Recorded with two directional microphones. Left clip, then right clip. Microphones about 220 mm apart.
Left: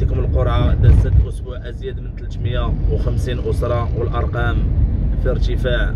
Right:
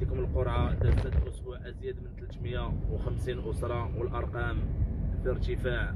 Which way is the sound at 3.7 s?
20° left (ahead or behind).